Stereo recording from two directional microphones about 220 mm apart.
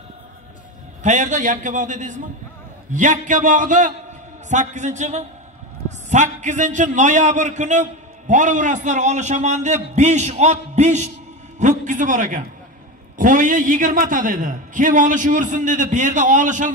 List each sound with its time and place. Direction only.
1.0 s a man's voice: 35° right (ahead or behind)